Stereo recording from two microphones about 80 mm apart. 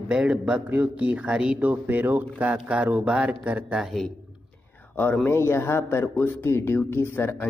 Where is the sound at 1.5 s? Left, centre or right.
Right.